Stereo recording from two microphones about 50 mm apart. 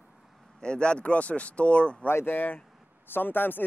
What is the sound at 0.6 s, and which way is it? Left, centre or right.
Speech, centre.